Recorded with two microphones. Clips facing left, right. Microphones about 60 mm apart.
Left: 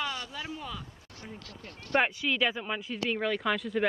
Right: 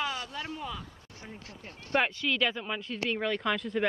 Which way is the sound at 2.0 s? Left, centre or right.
Centre.